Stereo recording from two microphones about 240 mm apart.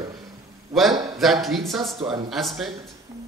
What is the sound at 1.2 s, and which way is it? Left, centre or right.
A man's voice, centre.